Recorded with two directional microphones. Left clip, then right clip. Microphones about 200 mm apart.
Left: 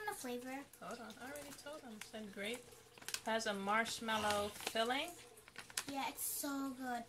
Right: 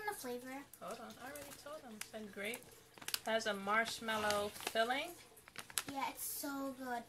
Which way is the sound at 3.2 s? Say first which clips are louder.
Right 1 dB; centre (ahead or behind).